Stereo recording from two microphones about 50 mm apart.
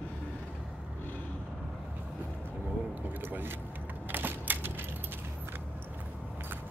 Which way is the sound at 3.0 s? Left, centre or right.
Right.